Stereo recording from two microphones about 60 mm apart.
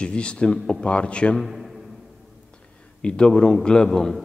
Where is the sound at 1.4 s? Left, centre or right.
Centre.